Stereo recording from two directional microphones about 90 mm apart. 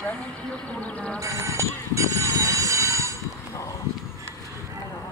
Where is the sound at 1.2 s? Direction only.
35° right (ahead or behind).